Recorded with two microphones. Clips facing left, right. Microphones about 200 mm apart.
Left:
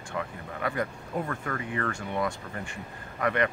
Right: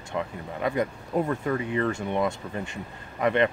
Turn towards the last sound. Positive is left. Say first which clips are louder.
# right 4 dB
turn(degrees=-20)  # may be behind; listen again after turning